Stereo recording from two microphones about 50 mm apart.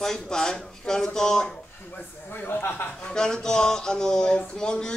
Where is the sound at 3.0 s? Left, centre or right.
Centre.